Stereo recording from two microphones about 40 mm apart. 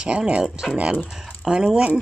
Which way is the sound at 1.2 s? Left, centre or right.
Centre.